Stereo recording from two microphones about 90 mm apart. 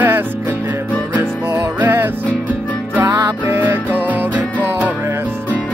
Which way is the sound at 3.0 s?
35° right (ahead or behind).